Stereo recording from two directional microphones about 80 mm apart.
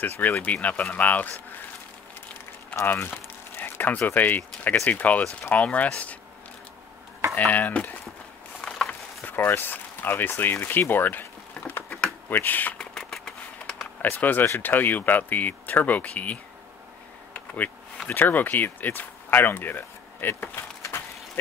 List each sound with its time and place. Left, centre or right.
0.0 s speech: left
2.7 s speech: left
7.5 s speech: left
8.6 s a sound: centre
9.2 s speech: left
12.7 s a sound: centre
14.0 s speech: left
18.0 s speech: left